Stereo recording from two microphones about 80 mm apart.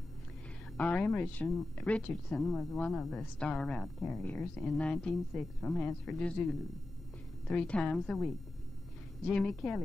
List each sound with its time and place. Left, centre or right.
0.7 s a woman's voice: centre
7.4 s a woman's voice: centre